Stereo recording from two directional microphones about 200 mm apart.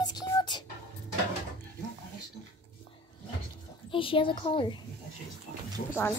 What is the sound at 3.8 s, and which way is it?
Speech, 25° left (ahead or behind).